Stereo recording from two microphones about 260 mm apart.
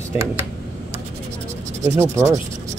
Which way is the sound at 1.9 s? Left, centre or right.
Centre.